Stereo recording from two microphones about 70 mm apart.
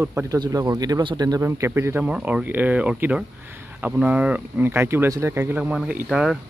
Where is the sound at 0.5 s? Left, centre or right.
Right.